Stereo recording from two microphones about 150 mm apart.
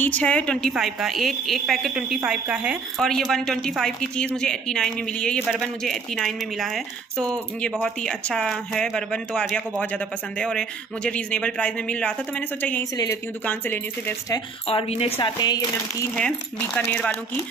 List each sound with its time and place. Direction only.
0.0 s speech: 10° left (ahead or behind)
12.9 s speech: 25° left (ahead or behind)
13.5 s speech: 15° left (ahead or behind)
14.7 s a woman's voice: 40° left (ahead or behind)
15.2 s speech: 30° left (ahead or behind)
16.2 s speech: 10° left (ahead or behind)